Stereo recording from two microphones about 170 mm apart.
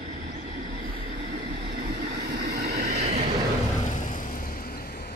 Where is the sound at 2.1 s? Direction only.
75° right (ahead or behind).